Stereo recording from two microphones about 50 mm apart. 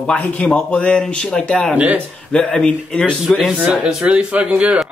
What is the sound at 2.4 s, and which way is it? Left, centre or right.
Speech, left.